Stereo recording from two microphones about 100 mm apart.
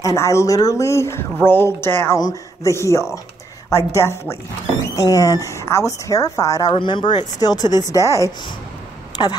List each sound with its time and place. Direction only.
0.0 s speech: 30° left (ahead or behind)
2.1 s speech: 35° left (ahead or behind)
6.7 s speech: 55° left (ahead or behind); by 8.3 s 30° left (ahead or behind)
9.2 s speech: 50° left (ahead or behind)